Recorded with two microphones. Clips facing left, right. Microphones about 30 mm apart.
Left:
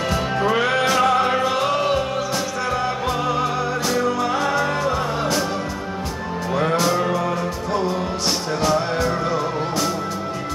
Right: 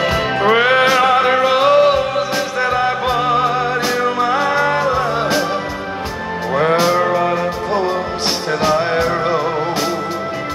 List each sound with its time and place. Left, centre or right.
0.0 s music: right
6.5 s music: right